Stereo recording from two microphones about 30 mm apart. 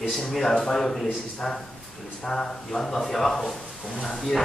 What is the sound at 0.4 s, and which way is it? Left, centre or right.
Speech, centre.